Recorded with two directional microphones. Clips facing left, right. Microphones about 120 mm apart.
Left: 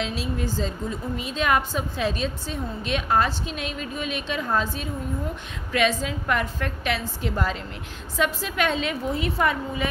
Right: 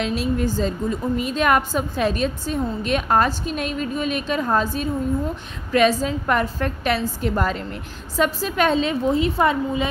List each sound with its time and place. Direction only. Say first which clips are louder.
0.0 s a woman's voice: right 6 dB; 50° right (ahead or behind); by 9.8 s 25° right (ahead or behind)